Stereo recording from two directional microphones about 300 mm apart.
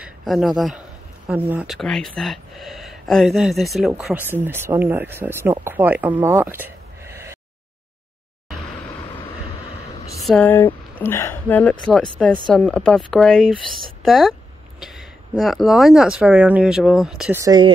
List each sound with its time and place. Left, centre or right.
0.0 s a man's voice: centre
10.2 s speech: centre